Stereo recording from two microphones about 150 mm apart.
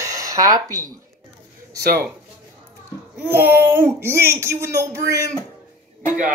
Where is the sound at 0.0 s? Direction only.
20° right (ahead or behind).